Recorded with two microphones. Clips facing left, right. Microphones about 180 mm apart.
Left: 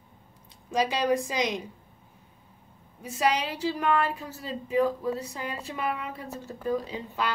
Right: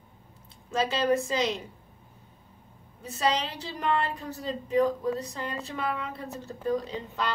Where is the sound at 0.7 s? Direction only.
15° left (ahead or behind).